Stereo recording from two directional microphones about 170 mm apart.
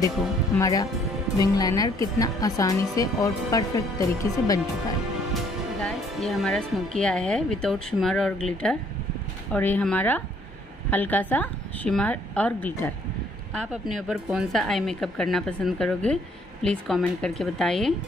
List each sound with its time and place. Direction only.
0.6 s speech: 20° left (ahead or behind)
5.3 s music: 5° left (ahead or behind)
7.0 s a woman's voice: 5° left (ahead or behind)